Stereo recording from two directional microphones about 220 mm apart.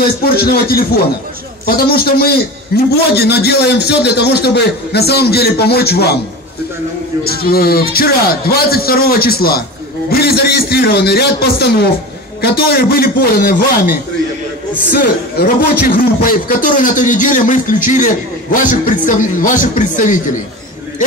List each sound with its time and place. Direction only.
0.4 s a man's voice: 45° left (ahead or behind)
7.2 s a man's voice: 45° left (ahead or behind)